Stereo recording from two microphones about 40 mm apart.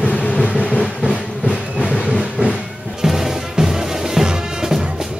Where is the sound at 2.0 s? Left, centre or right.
Centre.